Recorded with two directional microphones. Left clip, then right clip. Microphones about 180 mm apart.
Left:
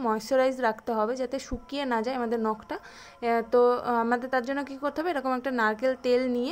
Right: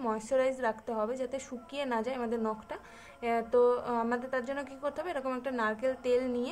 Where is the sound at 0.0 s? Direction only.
35° left (ahead or behind).